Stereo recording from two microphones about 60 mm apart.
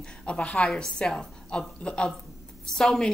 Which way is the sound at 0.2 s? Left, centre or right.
Centre.